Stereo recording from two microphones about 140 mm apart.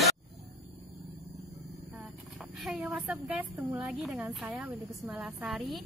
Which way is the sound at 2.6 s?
5° right (ahead or behind).